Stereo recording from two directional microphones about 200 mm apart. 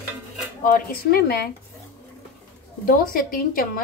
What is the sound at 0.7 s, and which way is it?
Speech, 50° left (ahead or behind).